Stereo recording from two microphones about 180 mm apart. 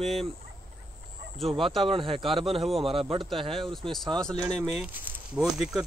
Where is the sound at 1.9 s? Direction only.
30° right (ahead or behind).